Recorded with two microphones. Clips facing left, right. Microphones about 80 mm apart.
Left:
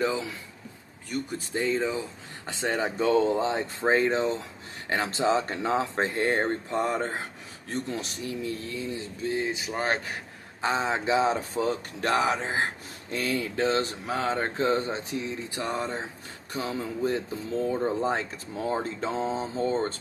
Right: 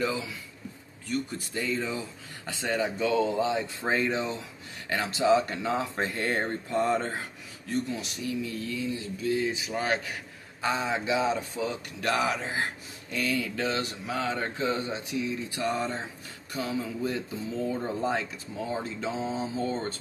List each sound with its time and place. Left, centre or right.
1.5 s speech: left
2.4 s mantra: left
5.0 s speech: left
7.6 s mantra: left
9.8 s mantra: left
12.0 s speech: left
13.1 s mantra: left
16.6 s speech: left
19.4 s mantra: left